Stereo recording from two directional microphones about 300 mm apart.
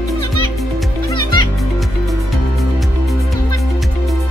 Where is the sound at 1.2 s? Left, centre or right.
Centre.